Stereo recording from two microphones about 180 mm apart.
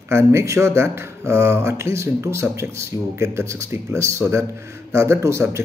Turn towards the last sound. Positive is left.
turn(degrees=-15)  # may be behind; listen again after turning